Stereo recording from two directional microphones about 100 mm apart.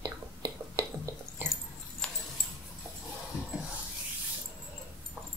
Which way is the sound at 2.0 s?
10° left (ahead or behind).